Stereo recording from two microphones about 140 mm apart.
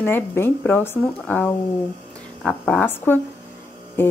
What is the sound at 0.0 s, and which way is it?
Speech, 15° left (ahead or behind).